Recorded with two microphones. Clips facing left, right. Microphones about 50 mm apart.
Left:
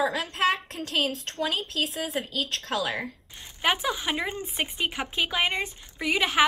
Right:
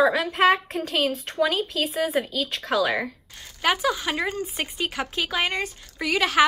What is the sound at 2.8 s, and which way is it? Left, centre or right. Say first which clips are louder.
Speech: right 9 dB; right.